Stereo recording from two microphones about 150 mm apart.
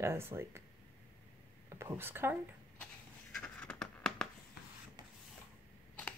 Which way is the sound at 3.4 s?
5° left (ahead or behind).